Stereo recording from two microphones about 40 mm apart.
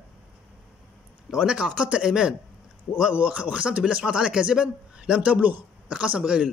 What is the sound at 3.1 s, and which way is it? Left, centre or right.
A man's voice, right.